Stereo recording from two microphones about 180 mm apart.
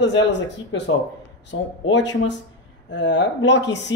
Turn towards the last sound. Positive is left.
turn(degrees=80)